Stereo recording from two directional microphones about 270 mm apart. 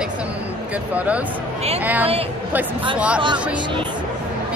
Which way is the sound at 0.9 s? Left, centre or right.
Centre.